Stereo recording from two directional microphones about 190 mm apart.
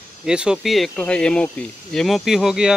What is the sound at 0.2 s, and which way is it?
Speech, 5° right (ahead or behind).